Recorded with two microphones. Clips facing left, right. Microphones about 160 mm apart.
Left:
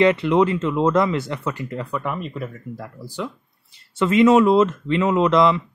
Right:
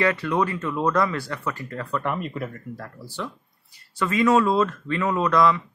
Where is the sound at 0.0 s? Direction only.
20° left (ahead or behind).